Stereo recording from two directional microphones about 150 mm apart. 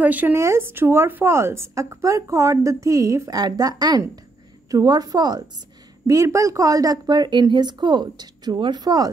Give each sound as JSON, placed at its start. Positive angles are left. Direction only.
{"t": 0.0, "sound": "speech", "side_deg": -10}